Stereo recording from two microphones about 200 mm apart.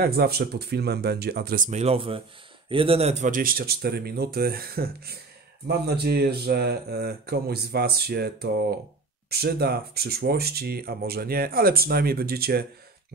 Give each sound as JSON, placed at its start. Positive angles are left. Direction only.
{"t": 0.0, "sound": "speech", "side_deg": -50}